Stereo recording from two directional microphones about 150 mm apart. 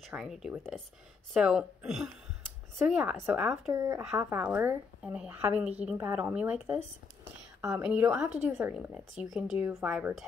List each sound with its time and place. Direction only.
0.0 s speech: centre (ahead or behind)
3.7 s speech: 20° right (ahead or behind)
4.0 s a woman's voice: 5° right (ahead or behind)